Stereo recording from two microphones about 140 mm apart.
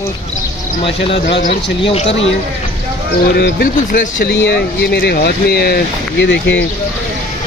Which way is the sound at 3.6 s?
90° left.